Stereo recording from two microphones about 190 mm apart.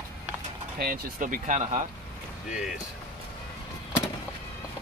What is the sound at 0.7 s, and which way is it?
Speech, 45° right (ahead or behind).